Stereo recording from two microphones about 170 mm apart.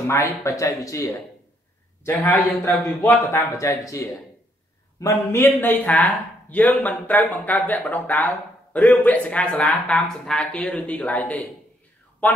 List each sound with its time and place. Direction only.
0.0 s speech: 15° left (ahead or behind)